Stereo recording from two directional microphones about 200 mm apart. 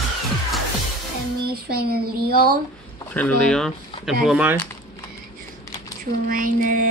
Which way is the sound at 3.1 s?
5° left (ahead or behind).